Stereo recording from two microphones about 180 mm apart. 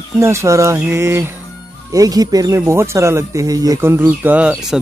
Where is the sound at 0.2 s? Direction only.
15° right (ahead or behind).